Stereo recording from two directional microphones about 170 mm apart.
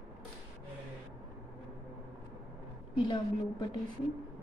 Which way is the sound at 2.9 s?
25° left (ahead or behind).